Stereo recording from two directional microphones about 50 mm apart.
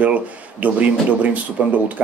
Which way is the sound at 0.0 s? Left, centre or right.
Right.